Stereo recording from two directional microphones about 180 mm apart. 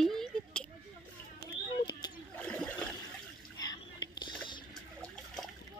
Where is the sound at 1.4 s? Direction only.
25° left (ahead or behind).